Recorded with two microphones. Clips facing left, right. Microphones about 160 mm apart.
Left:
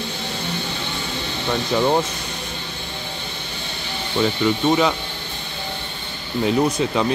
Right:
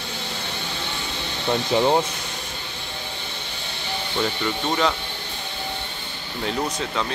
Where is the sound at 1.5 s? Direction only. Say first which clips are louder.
Even; 20° right (ahead or behind).